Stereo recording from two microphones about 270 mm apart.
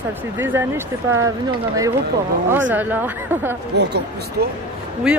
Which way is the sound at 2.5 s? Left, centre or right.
Centre.